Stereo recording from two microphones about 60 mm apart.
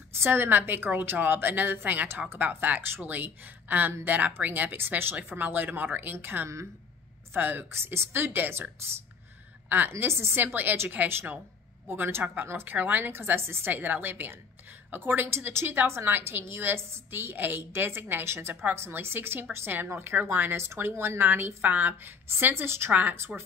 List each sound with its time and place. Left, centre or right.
0.1 s a woman's voice: right
12.7 s a woman's voice: right